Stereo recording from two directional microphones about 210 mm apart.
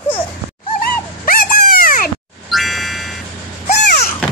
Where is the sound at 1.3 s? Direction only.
45° left (ahead or behind).